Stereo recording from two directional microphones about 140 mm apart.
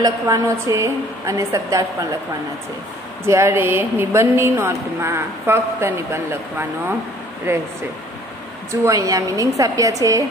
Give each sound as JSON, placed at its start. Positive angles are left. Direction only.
{"t": 0.0, "sound": "a woman's voice", "side_deg": -25}
{"t": 3.3, "sound": "a woman's voice", "side_deg": -20}
{"t": 7.5, "sound": "a woman's voice", "side_deg": -20}
{"t": 8.8, "sound": "a woman's voice", "side_deg": -25}